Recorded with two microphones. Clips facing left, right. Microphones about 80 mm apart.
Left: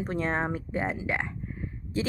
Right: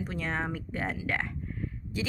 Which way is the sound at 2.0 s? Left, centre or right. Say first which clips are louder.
Left 5 dB; left.